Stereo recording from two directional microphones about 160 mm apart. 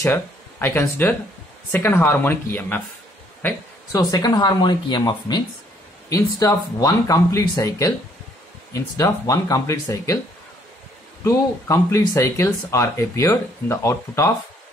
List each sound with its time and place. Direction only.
0.0 s speech: 15° left (ahead or behind)
4.1 s speech: 25° left (ahead or behind)
11.2 s speech: 20° left (ahead or behind)